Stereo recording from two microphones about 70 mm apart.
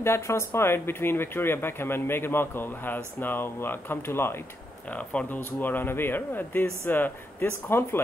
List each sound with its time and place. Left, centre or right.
0.0 s speech: left
4.9 s speech: left